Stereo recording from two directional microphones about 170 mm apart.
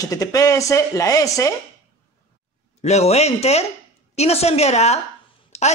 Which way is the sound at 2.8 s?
40° left (ahead or behind).